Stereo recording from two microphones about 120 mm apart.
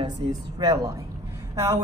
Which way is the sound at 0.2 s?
45° right (ahead or behind).